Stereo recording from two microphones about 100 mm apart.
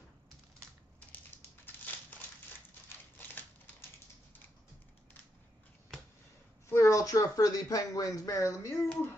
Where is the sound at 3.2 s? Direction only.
20° left (ahead or behind).